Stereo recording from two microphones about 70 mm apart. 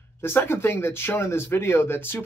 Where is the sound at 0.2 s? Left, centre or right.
Left.